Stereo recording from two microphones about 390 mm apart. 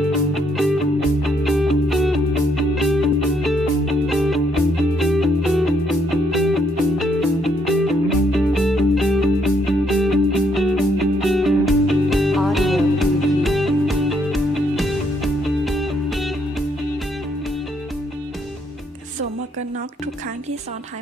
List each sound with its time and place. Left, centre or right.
0.3 s music: centre